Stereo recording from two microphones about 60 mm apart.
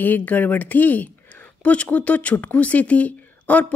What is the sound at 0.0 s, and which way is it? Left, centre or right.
Speech, left.